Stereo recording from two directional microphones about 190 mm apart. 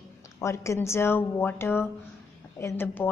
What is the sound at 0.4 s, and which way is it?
A woman's voice, 15° left (ahead or behind).